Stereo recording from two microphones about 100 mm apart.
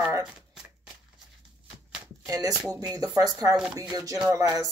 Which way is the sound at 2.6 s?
35° right (ahead or behind).